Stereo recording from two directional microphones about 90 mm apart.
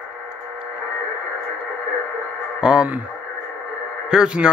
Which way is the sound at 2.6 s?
10° right (ahead or behind).